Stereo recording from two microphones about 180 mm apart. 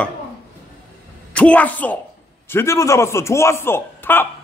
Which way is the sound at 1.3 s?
5° left (ahead or behind).